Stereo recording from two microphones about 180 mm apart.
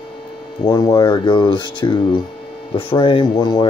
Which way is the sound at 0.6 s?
20° left (ahead or behind).